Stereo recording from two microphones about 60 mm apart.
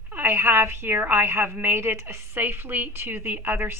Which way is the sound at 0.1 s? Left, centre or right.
Right.